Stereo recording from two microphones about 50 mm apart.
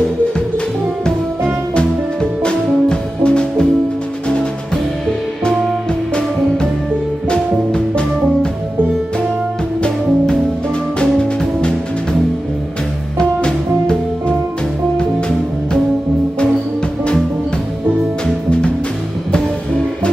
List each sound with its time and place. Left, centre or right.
2.4 s music: centre
7.2 s music: centre
13.2 s music: centre